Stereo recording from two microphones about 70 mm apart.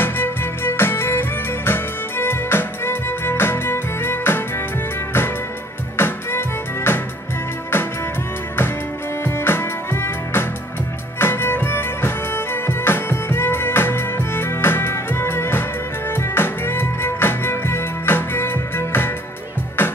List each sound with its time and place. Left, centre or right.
0.0 s music: left
5.9 s music: left
9.2 s music: left